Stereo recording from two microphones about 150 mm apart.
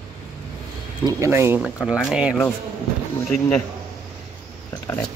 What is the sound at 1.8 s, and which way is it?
Speech, 5° right (ahead or behind).